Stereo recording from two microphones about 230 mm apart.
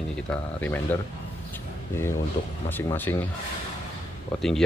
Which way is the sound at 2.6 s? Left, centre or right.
Centre.